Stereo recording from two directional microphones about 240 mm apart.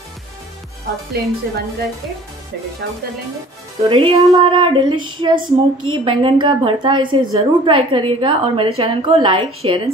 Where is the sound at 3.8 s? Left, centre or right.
Right.